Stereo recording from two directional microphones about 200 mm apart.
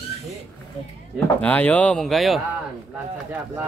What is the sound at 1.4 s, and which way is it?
Speech, 10° left (ahead or behind).